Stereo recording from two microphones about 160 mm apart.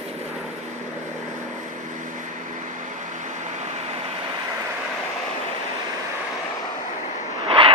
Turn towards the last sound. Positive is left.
turn(degrees=-35)  # may be behind; listen again after turning